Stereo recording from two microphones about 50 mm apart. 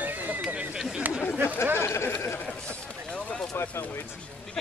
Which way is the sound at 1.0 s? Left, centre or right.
Right.